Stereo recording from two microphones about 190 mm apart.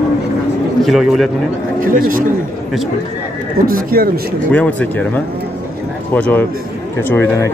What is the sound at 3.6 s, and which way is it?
Speech, 50° right (ahead or behind).